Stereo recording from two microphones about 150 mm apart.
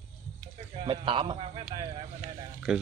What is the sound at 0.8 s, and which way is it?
A man's voice, 35° right (ahead or behind).